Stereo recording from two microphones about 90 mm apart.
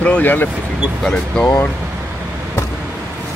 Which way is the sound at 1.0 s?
5° left (ahead or behind).